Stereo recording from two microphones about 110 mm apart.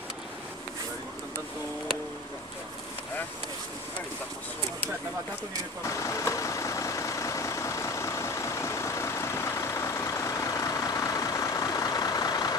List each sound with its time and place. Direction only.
5.9 s vehicle: 30° left (ahead or behind)